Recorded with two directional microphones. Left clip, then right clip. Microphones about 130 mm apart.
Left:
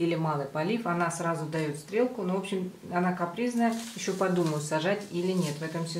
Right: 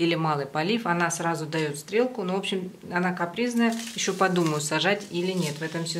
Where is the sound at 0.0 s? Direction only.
35° right (ahead or behind).